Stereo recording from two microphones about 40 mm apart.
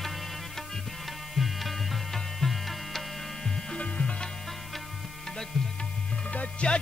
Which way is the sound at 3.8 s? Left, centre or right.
Left.